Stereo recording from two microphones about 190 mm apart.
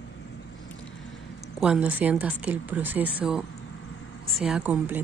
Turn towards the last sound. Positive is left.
turn(degrees=-10)  # may be behind; listen again after turning